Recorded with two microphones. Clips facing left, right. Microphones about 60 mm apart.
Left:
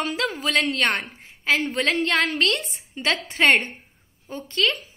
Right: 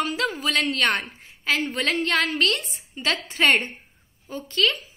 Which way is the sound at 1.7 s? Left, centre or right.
Left.